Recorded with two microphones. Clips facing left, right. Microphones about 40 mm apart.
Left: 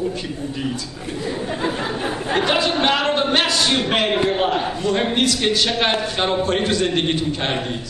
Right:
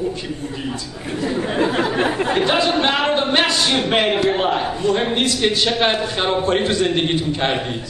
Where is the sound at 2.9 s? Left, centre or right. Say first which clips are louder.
Right 1 dB; right.